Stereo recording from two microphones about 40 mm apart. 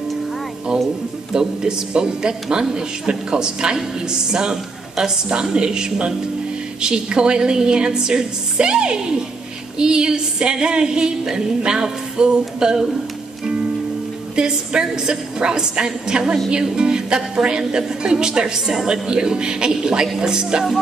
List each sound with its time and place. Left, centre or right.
0.7 s a woman's voice: centre
14.3 s a woman's voice: right